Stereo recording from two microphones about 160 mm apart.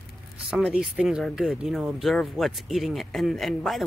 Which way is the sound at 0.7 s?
5° right (ahead or behind).